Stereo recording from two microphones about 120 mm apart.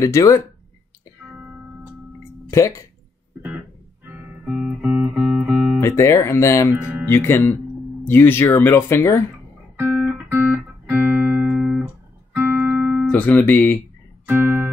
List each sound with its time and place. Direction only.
0.0 s speech: 25° left (ahead or behind)
2.5 s speech: 25° left (ahead or behind)
3.4 s music: 15° right (ahead or behind)
5.4 s guitar: 10° right (ahead or behind)
5.8 s speech: 25° left (ahead or behind)
6.8 s speech: 10° right (ahead or behind)
7.1 s speech: 20° left (ahead or behind)
9.8 s music: 15° right (ahead or behind)
13.1 s speech: 15° left (ahead or behind)
14.2 s music: 15° right (ahead or behind)